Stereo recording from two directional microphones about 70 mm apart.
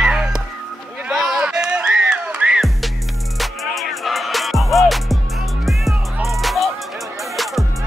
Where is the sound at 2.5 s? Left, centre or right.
Centre.